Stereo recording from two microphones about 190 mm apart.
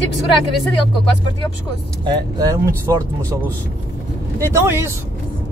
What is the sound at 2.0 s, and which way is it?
Speech, 20° right (ahead or behind).